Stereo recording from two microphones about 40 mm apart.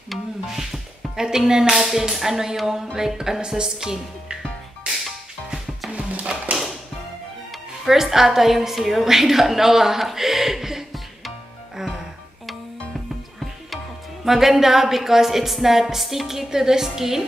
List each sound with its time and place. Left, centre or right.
0.1 s music: centre
1.5 s a woman's voice: centre
5.9 s music: right
7.8 s a woman's voice: centre
14.2 s a woman's voice: centre